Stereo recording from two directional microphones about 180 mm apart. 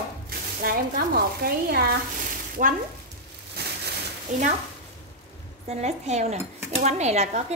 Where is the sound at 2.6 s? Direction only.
45° right (ahead or behind).